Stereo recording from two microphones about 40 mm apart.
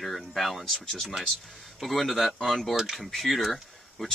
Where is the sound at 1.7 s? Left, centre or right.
Centre.